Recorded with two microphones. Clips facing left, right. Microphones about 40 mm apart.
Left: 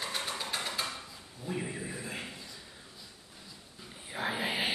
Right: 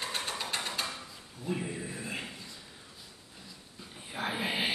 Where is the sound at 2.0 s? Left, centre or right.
Centre.